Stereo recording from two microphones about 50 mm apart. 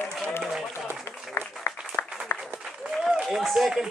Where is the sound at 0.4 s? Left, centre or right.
Centre.